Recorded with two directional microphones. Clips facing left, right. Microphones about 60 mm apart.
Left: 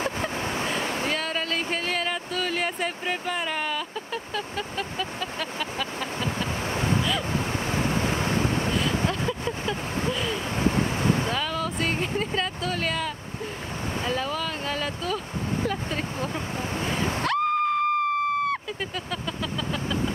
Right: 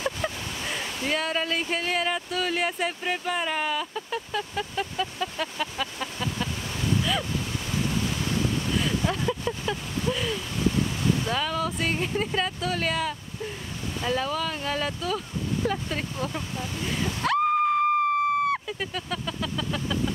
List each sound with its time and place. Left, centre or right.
0.0 s vehicle: left
1.1 s speech: centre
5.9 s a sound: left
7.5 s waves: left
10.3 s waves: left
11.3 s speech: centre
16.2 s speech: left
17.2 s a sound: centre